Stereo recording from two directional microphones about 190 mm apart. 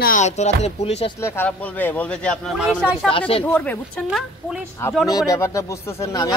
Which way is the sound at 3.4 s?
5° left (ahead or behind).